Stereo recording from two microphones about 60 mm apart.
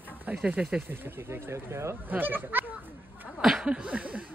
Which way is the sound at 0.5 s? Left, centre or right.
Right.